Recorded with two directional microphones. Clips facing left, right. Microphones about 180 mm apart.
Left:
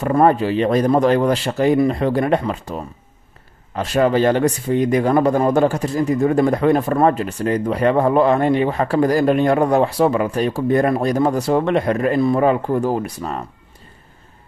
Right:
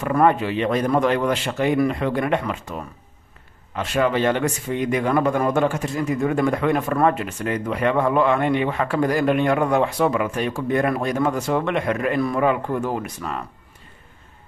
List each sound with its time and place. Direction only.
0.0 s speech: 35° left (ahead or behind)